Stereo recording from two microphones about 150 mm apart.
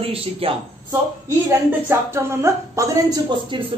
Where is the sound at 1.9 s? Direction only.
15° right (ahead or behind).